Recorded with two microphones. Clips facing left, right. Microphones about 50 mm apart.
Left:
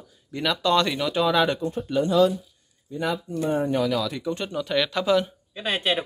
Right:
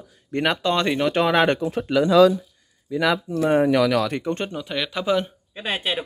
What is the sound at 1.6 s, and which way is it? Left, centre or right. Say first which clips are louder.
Speech: right 4 dB; right.